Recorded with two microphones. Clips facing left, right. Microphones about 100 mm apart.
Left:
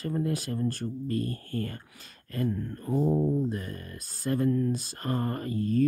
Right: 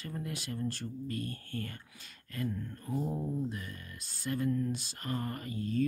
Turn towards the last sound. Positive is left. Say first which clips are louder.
# left 7 dB
turn(degrees=45)  # may be behind; listen again after turning